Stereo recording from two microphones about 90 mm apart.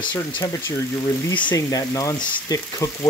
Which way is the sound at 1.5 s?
40° left (ahead or behind).